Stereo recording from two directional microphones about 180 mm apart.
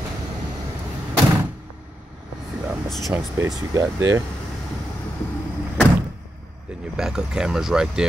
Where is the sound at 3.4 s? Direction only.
15° right (ahead or behind).